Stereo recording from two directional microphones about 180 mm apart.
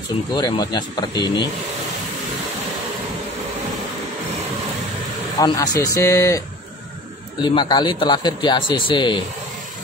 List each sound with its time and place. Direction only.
0.4 s a man's voice: 25° left (ahead or behind)
5.4 s a man's voice: 20° left (ahead or behind)
7.4 s a man's voice: 25° left (ahead or behind)